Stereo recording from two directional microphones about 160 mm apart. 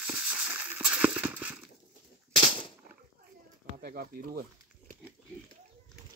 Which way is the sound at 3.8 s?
65° right (ahead or behind).